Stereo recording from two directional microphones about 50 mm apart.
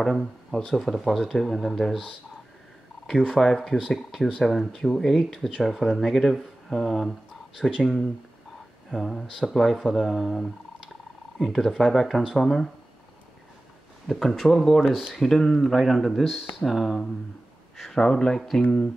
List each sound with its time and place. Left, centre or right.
0.0 s speech: centre
3.3 s speech: centre
14.0 s speech: centre
14.9 s speech: centre
15.1 s speech: centre
17.7 s a sound: centre
18.0 s speech: centre